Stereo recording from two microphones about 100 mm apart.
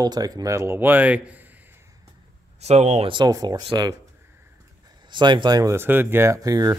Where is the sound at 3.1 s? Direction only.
50° right (ahead or behind).